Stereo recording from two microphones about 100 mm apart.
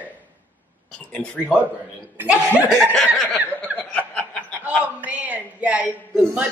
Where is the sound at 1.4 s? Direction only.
15° right (ahead or behind).